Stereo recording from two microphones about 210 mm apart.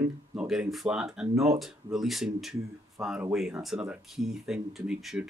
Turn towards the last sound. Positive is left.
turn(degrees=-5)  # may be behind; listen again after turning